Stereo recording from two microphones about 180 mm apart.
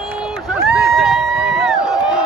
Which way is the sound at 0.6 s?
5° right (ahead or behind).